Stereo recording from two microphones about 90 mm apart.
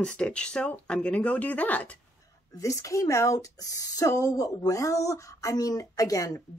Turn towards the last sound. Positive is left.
turn(degrees=40)  # may be behind; listen again after turning